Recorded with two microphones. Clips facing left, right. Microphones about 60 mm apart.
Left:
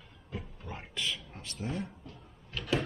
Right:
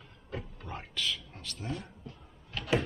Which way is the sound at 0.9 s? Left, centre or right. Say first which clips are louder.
Right 1 dB; centre.